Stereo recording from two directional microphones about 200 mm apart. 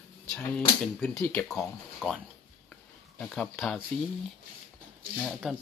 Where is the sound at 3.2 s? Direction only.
5° left (ahead or behind).